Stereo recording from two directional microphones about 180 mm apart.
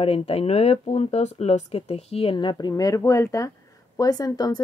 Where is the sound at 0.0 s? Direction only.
35° left (ahead or behind).